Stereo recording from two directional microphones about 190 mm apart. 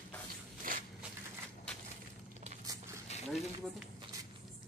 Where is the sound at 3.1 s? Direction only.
35° left (ahead or behind).